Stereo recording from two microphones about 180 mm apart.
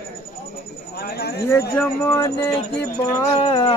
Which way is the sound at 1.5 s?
15° left (ahead or behind).